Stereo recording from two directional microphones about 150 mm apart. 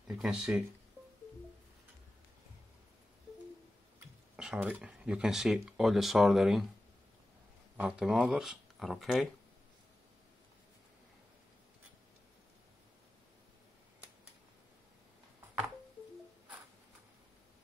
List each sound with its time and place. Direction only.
0.1 s speech: 5° right (ahead or behind)
4.4 s speech: 5° right (ahead or behind)
7.7 s speech: 5° right (ahead or behind)